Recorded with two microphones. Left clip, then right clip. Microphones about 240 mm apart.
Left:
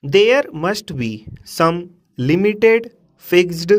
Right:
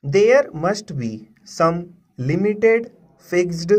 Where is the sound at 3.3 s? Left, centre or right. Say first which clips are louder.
Left 5 dB; left.